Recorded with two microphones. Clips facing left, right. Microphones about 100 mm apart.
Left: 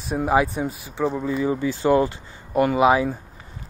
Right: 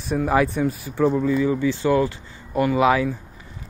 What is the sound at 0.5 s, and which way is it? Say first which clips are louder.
Speech: right 4 dB; 30° left (ahead or behind).